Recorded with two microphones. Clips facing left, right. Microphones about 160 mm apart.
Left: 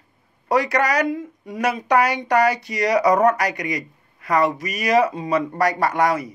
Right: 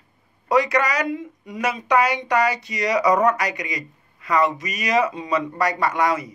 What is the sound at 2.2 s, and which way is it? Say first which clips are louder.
Speech: left 3 dB; 35° left (ahead or behind).